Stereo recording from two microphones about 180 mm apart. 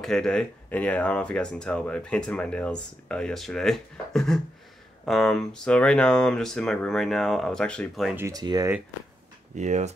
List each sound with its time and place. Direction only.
0.0 s speech: 5° left (ahead or behind)
8.2 s speech: 20° right (ahead or behind)
9.6 s speech: 40° right (ahead or behind)